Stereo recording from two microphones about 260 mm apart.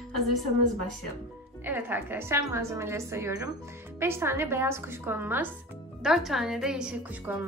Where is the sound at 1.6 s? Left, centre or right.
Centre.